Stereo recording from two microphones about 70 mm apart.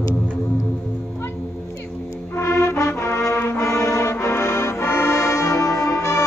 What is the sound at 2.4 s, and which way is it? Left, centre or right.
Music, left.